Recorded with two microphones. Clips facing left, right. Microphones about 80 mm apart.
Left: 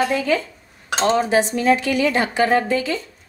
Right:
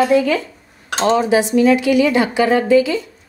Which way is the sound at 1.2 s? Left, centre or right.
Left.